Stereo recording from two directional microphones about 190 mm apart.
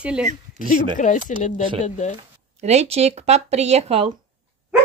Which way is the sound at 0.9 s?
40° left (ahead or behind).